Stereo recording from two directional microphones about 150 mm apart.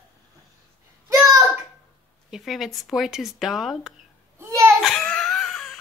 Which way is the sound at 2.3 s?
Centre (ahead or behind).